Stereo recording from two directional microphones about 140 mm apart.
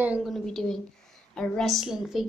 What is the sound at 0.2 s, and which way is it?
Speech, centre (ahead or behind).